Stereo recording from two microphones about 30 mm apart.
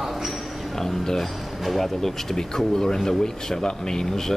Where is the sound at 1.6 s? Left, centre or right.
Centre.